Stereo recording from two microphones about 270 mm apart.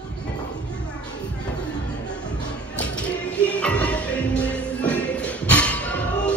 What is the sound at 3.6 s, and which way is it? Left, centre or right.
Music, centre.